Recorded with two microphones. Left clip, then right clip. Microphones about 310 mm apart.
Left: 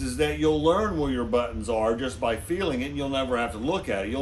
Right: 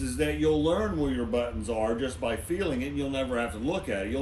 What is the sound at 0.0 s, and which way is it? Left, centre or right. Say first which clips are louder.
A man's voice: left 3 dB; centre.